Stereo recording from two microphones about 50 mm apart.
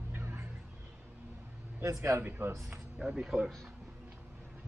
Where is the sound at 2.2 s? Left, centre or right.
Right.